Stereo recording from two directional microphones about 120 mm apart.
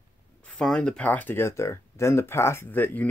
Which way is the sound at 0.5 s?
5° left (ahead or behind).